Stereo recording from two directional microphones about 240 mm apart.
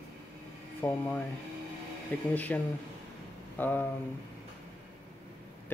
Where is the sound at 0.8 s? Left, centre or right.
Centre.